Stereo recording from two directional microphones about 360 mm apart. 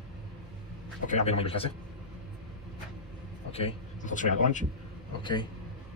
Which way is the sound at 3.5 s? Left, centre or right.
Centre.